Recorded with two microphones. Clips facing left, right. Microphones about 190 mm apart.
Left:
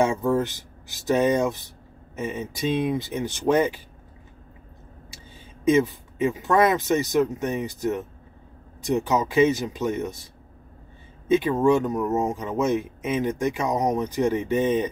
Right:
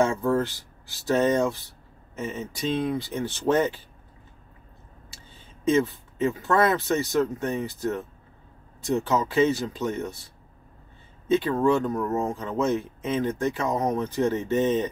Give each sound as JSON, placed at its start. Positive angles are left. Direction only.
{"t": 0.0, "sound": "speech", "side_deg": 20}
{"t": 5.7, "sound": "speech", "side_deg": 15}